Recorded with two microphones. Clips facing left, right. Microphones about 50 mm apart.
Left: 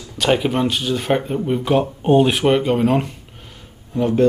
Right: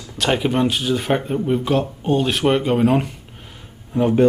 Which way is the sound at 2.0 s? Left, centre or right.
Centre.